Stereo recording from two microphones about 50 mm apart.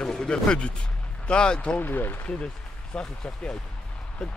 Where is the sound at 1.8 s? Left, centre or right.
Left.